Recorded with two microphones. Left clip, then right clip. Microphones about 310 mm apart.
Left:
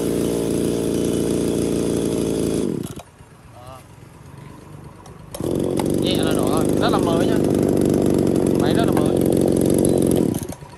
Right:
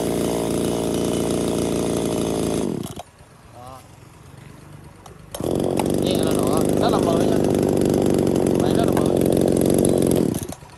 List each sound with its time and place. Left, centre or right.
0.0 s chainsaw: centre
5.8 s chainsaw: centre
6.0 s vehicle: right
6.6 s vehicle: centre
7.2 s a sound: centre